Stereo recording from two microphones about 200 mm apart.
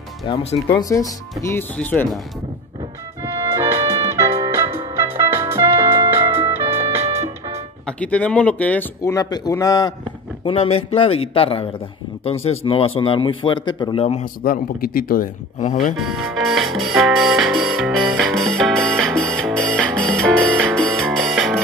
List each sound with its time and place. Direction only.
0.3 s speech: 30° left (ahead or behind)
0.7 s speech: 20° left (ahead or behind)
3.2 s music: 15° right (ahead or behind)
7.0 s music: 30° right (ahead or behind)
7.8 s speech: 5° left (ahead or behind)
10.4 s speech: 30° left (ahead or behind)
14.4 s speech: 45° left (ahead or behind)
15.8 s music: centre (ahead or behind)